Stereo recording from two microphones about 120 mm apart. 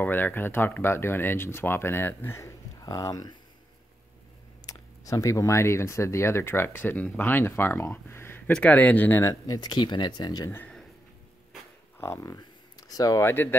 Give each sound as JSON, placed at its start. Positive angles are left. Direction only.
{"t": 0.0, "sound": "speech", "side_deg": 15}
{"t": 4.6, "sound": "speech", "side_deg": 30}
{"t": 12.0, "sound": "a sound", "side_deg": 25}
{"t": 13.3, "sound": "speech", "side_deg": 20}